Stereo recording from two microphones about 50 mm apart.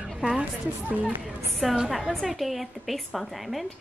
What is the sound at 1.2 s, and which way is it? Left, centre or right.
Speech, centre.